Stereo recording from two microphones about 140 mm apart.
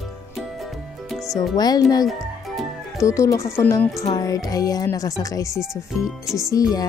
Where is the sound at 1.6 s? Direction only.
30° left (ahead or behind).